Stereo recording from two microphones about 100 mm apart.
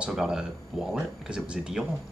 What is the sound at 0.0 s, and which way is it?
Speech, 5° right (ahead or behind).